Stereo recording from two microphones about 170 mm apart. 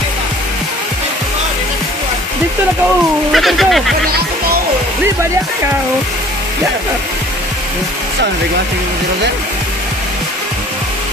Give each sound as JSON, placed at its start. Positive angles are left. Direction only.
{"t": 3.3, "sound": "speech", "side_deg": 0}